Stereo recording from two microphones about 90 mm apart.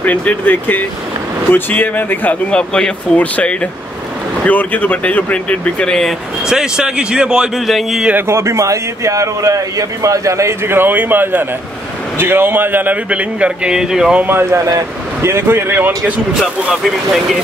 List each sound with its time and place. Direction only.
0.0 s speech: 20° left (ahead or behind)
6.4 s a man's voice: 5° right (ahead or behind)
8.3 s a man's voice: 30° right (ahead or behind); by 14.2 s 5° right (ahead or behind)
14.2 s speech: 25° right (ahead or behind)
14.7 s speech: 40° right (ahead or behind)
15.3 s speech: 25° right (ahead or behind)
16.7 s speech: centre (ahead or behind)